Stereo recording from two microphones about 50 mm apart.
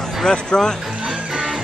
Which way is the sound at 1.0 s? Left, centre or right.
Centre.